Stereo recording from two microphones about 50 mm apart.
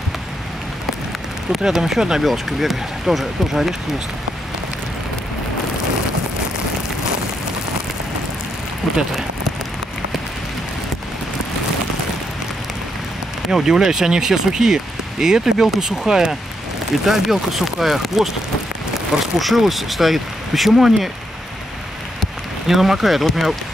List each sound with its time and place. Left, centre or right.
1.7 s speech: centre
8.8 s a sound: centre
13.5 s speech: centre
19.4 s speech: centre
22.2 s speech: centre